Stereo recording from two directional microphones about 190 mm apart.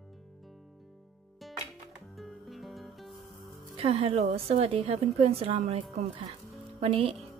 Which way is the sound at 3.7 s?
30° right (ahead or behind).